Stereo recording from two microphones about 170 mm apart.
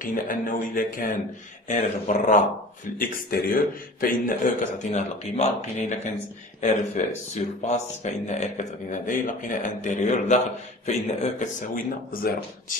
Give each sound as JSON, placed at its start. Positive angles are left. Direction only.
{"t": 0.0, "sound": "speech", "side_deg": 50}